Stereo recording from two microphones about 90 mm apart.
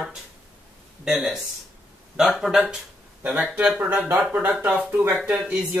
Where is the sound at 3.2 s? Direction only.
15° right (ahead or behind).